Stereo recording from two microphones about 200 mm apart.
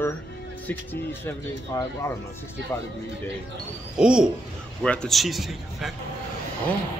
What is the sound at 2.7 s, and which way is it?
Speech, 10° left (ahead or behind).